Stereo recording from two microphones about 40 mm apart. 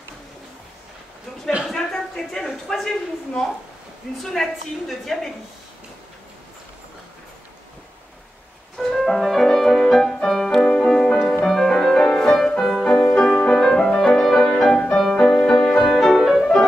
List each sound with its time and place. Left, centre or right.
1.8 s a sound: centre
2.4 s a woman's voice: centre
8.7 s music: centre
15.3 s music: centre
16.0 s music: centre